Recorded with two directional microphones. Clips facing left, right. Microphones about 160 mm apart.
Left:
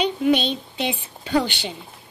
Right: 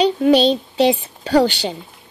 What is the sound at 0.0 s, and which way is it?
A woman's voice, 35° right (ahead or behind).